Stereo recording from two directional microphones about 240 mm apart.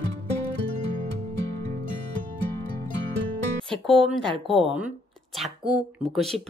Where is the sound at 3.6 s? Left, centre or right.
Centre.